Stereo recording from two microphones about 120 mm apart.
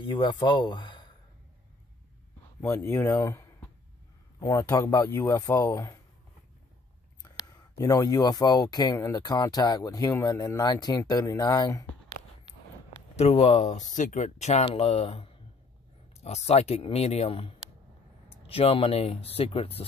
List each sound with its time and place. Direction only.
0.0 s speech: 40° left (ahead or behind)
2.6 s speech: 25° left (ahead or behind)
7.2 s a sound: 30° left (ahead or behind)
7.7 s speech: 30° left (ahead or behind)
13.2 s speech: 65° left (ahead or behind)
14.7 s speech: 55° left (ahead or behind)